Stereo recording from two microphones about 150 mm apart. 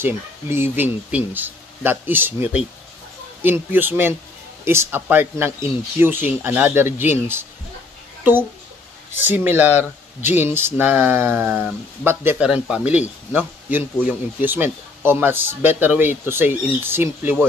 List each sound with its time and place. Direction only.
0.0 s a man's voice: 15° right (ahead or behind)